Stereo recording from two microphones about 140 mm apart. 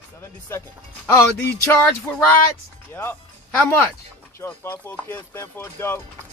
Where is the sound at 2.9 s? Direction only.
15° left (ahead or behind).